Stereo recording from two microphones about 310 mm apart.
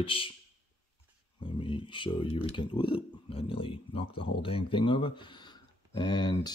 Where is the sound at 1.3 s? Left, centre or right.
Centre.